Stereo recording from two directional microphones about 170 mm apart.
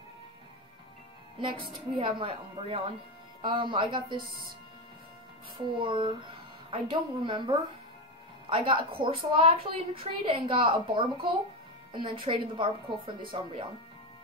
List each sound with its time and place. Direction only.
1.4 s speech: 30° right (ahead or behind)
5.8 s a woman's voice: 30° right (ahead or behind)